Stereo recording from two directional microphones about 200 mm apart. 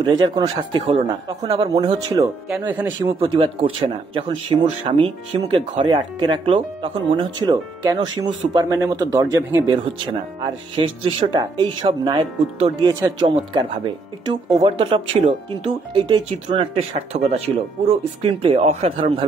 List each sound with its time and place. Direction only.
0.0 s speech: 20° right (ahead or behind)
2.5 s speech: 10° right (ahead or behind)
3.0 s speech: 25° right (ahead or behind)